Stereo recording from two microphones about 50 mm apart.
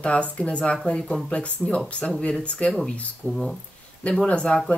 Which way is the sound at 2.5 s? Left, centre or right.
Centre.